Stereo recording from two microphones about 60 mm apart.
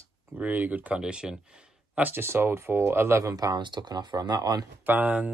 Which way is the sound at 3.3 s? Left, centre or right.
Right.